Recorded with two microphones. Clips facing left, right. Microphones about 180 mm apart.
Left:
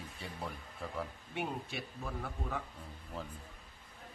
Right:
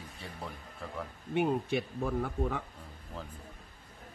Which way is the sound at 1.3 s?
55° right (ahead or behind).